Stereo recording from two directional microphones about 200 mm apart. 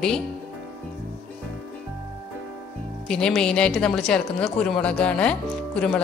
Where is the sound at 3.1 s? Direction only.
5° left (ahead or behind).